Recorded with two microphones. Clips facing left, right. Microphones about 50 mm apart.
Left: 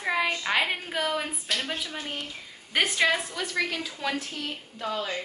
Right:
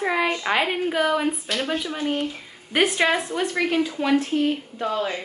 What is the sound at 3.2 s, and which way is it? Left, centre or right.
Speech, right.